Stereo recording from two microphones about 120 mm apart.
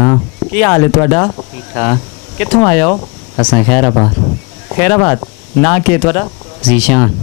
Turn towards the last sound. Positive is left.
turn(degrees=10)  # may be behind; listen again after turning